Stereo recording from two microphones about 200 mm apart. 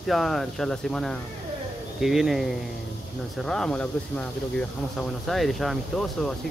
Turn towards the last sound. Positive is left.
turn(degrees=0)  # may be behind; listen again after turning